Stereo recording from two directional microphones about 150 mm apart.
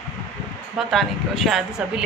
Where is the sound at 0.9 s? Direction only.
Centre (ahead or behind).